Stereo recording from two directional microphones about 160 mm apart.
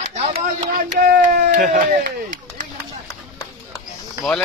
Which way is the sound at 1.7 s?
60° right (ahead or behind).